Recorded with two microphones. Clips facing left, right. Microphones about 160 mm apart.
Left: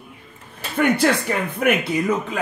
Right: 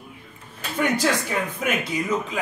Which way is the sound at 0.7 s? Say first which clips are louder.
Left 4 dB; 60° left (ahead or behind).